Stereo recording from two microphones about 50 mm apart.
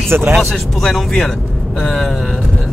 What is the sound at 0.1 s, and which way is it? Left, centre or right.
Speech, right.